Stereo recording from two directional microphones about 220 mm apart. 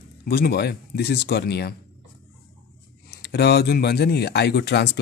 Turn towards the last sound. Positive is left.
turn(degrees=50)  # may be behind; listen again after turning